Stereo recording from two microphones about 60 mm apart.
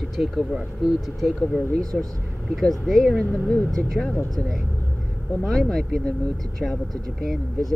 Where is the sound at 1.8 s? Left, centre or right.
Right.